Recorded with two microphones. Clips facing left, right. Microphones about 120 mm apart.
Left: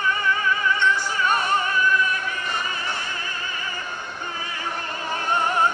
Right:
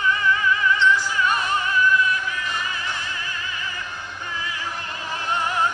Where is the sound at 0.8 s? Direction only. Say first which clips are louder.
Right 2 dB; 40° left (ahead or behind).